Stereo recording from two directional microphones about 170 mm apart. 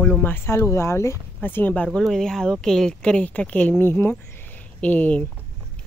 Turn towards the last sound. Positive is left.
turn(degrees=10)  # may be behind; listen again after turning